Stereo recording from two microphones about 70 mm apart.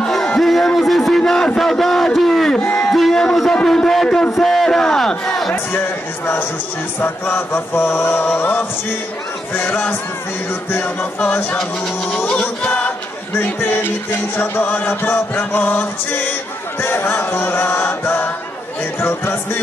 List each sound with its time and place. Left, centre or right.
0.0 s a sound: centre
2.1 s crowd: centre
2.6 s crowd: centre
2.9 s a sound: centre
5.5 s chant: left
7.0 s music: left
9.5 s chant: left
10.7 s music: left
13.6 s music: left
16.8 s chant: left